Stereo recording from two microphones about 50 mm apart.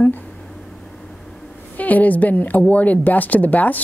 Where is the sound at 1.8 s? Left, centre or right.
Left.